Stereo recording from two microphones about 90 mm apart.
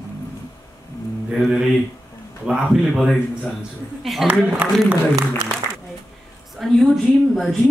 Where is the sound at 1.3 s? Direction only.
5° right (ahead or behind).